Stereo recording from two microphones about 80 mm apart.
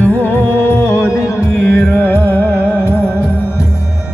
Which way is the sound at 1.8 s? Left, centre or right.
Left.